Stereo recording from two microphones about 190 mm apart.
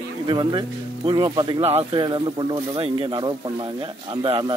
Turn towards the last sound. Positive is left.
turn(degrees=-25)  # may be behind; listen again after turning